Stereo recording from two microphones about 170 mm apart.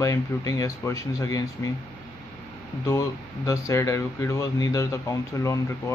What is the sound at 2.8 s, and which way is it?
Speech, 20° left (ahead or behind).